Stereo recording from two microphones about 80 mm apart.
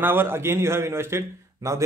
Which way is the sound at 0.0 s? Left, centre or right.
Right.